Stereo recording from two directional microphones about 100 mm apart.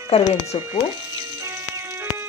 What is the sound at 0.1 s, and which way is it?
Speech, 85° left.